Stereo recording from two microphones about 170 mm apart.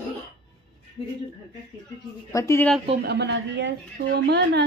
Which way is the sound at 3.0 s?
75° right (ahead or behind).